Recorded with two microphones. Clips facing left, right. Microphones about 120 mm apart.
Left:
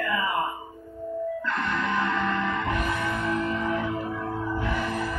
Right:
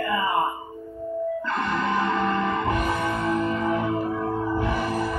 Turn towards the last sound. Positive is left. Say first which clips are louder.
# right 3 dB
turn(degrees=-15)  # may be behind; listen again after turning